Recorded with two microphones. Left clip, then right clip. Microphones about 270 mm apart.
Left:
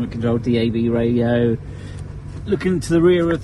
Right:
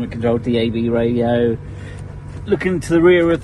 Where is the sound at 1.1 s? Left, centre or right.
Left.